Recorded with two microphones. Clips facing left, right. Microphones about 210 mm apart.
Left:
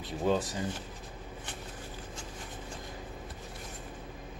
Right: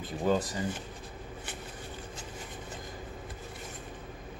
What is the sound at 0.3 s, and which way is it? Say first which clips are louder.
Speech: right 1 dB; centre (ahead or behind).